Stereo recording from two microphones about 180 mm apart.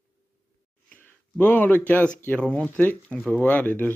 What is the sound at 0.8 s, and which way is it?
Speech, 10° left (ahead or behind).